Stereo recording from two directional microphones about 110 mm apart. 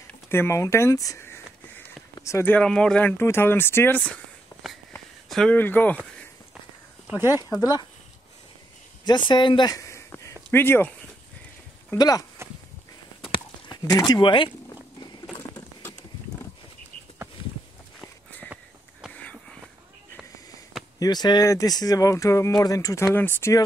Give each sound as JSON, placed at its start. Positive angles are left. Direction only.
{"t": 0.3, "sound": "speech", "side_deg": 20}
{"t": 1.2, "sound": "a sound", "side_deg": 20}
{"t": 2.1, "sound": "speech", "side_deg": 25}
{"t": 2.5, "sound": "speech", "side_deg": 10}
{"t": 5.3, "sound": "speech", "side_deg": 5}
{"t": 7.5, "sound": "speech", "side_deg": 35}
{"t": 9.0, "sound": "speech", "side_deg": 45}
{"t": 9.8, "sound": "a sound", "side_deg": 25}
{"t": 10.5, "sound": "speech", "side_deg": 20}
{"t": 12.0, "sound": "speech", "side_deg": 35}
{"t": 13.3, "sound": "a sound", "side_deg": 40}
{"t": 18.5, "sound": "sniff", "side_deg": -5}
{"t": 21.0, "sound": "speech", "side_deg": 40}
{"t": 23.1, "sound": "speech", "side_deg": 15}